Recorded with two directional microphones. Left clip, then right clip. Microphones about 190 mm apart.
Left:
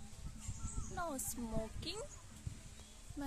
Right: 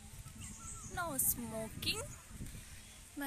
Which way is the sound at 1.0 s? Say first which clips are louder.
Right 2 dB; 5° left (ahead or behind).